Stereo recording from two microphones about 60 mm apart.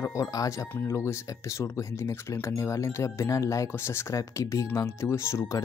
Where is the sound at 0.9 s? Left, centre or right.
Left.